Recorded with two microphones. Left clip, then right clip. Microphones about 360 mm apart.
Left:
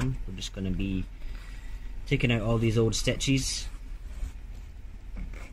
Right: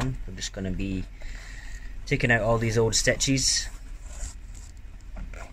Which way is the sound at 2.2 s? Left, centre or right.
Right.